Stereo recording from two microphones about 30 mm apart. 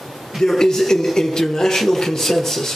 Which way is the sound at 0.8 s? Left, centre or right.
Centre.